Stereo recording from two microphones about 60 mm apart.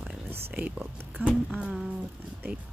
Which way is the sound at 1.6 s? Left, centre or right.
Centre.